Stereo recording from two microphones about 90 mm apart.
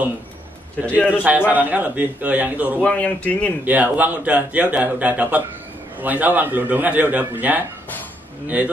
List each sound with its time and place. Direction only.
0.8 s a man's voice: 20° left (ahead or behind)
1.5 s a man's voice: 20° right (ahead or behind)
2.8 s a man's voice: 15° left (ahead or behind)
3.6 s a man's voice: 20° right (ahead or behind)